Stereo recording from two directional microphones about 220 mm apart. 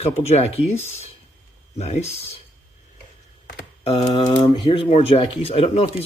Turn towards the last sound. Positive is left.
turn(degrees=30)  # may be behind; listen again after turning